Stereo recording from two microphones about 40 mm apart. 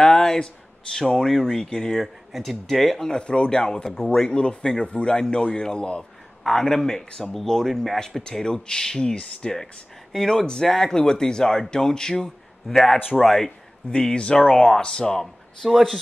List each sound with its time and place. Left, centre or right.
0.0 s a sound: centre
0.9 s speech: centre
2.0 s speech: centre
3.1 s speech: left
3.9 s speech: centre
4.2 s speech: left
6.4 s speech: centre
8.4 s speech: centre
13.9 s speech: left
14.4 s speech: centre
15.7 s speech: centre